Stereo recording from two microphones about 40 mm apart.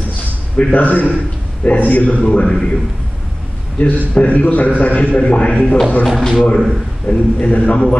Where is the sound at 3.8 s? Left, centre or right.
Left.